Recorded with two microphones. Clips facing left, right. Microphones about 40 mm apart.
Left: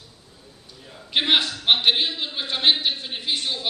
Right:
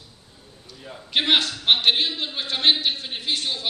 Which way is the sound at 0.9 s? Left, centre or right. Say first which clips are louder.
Even; centre.